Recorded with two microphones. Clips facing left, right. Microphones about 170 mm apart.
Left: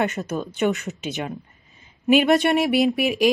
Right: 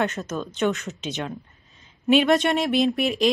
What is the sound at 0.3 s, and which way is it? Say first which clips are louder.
Speech: left 2 dB; 10° left (ahead or behind).